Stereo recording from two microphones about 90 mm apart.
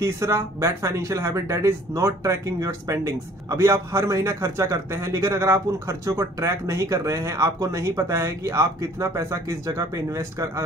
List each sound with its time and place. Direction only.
0.0 s speech: 35° right (ahead or behind)